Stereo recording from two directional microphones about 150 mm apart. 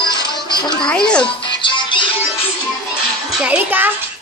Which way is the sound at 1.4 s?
35° left (ahead or behind).